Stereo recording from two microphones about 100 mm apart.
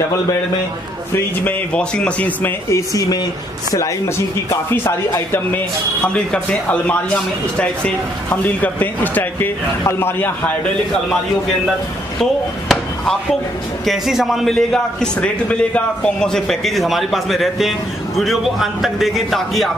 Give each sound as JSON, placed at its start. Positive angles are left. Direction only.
{"t": 1.1, "sound": "speech", "side_deg": 15}
{"t": 2.7, "sound": "speech", "side_deg": 35}
{"t": 6.1, "sound": "speech", "side_deg": 10}
{"t": 12.2, "sound": "a man's voice", "side_deg": 5}